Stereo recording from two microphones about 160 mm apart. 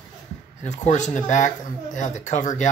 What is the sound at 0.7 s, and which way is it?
Speech, 50° left (ahead or behind).